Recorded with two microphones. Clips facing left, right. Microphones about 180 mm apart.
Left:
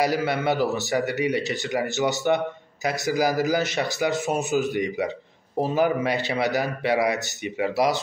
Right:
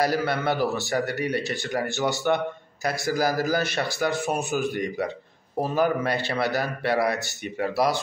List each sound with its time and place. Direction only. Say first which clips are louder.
0.0 s a man's voice: left 1 dB; 15° left (ahead or behind)